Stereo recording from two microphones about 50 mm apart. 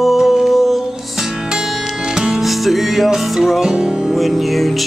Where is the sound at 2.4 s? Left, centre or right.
Centre.